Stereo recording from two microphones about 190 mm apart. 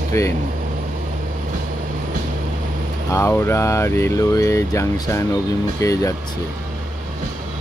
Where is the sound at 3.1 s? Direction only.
15° left (ahead or behind).